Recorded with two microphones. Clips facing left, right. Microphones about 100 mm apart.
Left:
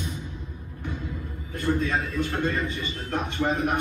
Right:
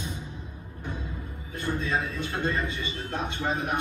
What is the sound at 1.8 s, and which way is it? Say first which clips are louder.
A man's voice: left 3 dB; 50° left (ahead or behind).